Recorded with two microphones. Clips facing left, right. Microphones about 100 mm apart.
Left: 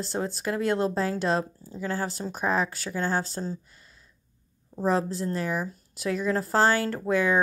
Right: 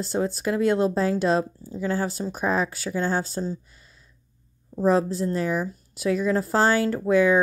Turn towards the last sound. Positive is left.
turn(degrees=-15)  # may be behind; listen again after turning